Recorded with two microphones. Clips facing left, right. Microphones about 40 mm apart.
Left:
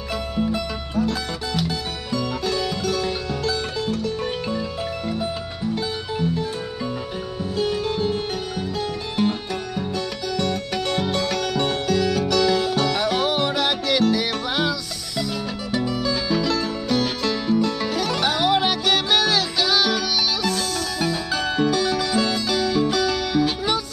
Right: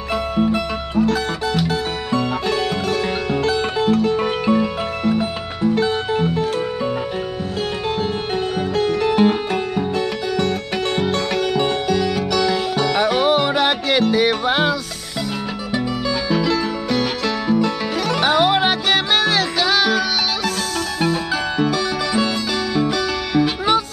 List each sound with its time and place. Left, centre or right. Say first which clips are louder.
0.4 s music: right 4 dB; right
8.5 s music: right 8 dB; right
11.9 s music: right 1 dB; centre
13.0 s music: right 5 dB; right
16.3 s music: right 6 dB; right
21.5 s music: left 1 dB; centre